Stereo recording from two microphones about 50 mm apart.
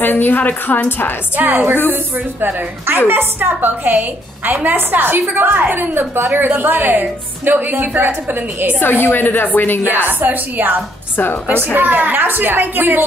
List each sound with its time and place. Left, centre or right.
0.0 s a woman's voice: left
0.8 s a woman's voice: left
1.3 s a woman's voice: right
3.1 s a woman's voice: right
9.0 s a woman's voice: left
9.8 s a woman's voice: right